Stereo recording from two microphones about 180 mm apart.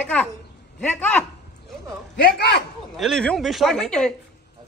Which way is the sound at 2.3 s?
65° left (ahead or behind).